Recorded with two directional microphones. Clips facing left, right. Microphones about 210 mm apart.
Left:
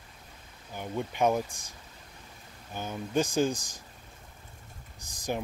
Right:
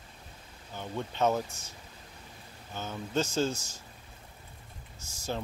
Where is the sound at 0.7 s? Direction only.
10° left (ahead or behind).